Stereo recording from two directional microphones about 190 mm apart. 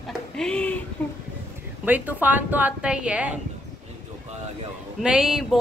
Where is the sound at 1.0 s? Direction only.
10° left (ahead or behind).